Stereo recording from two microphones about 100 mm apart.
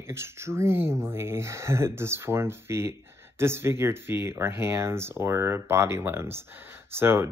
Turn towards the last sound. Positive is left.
turn(degrees=-25)  # may be behind; listen again after turning